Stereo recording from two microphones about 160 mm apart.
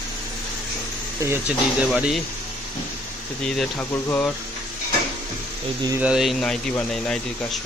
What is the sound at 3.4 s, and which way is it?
Speech, centre (ahead or behind).